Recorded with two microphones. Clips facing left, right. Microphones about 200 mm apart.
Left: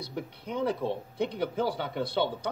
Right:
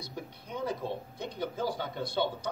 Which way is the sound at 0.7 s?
60° left (ahead or behind).